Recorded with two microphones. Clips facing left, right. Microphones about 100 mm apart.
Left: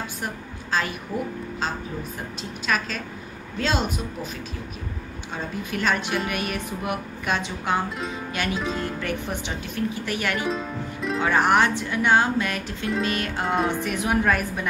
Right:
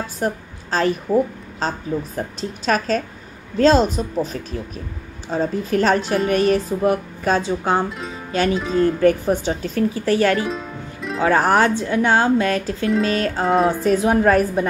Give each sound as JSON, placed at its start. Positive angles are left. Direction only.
{"t": 0.2, "sound": "a woman's voice", "side_deg": -40}
{"t": 8.3, "sound": "music", "side_deg": -30}
{"t": 8.5, "sound": "speech", "side_deg": 0}
{"t": 9.0, "sound": "a woman's voice", "side_deg": -40}
{"t": 10.4, "sound": "music", "side_deg": 0}
{"t": 11.2, "sound": "a woman's voice", "side_deg": -35}